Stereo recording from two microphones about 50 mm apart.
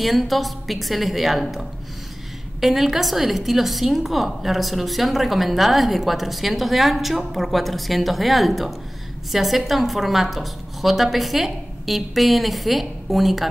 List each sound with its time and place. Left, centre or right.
0.0 s a woman's voice: centre